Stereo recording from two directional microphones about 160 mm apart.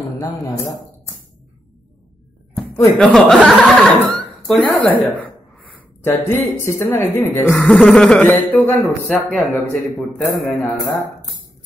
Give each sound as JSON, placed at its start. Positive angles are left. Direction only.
{"t": 0.2, "sound": "speech", "side_deg": 20}
{"t": 3.0, "sound": "a man's voice", "side_deg": 5}
{"t": 5.8, "sound": "a sound", "side_deg": 15}
{"t": 6.8, "sound": "a man's voice", "side_deg": 15}